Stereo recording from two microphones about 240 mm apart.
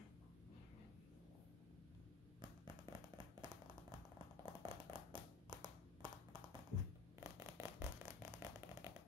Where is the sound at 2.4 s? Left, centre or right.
Centre.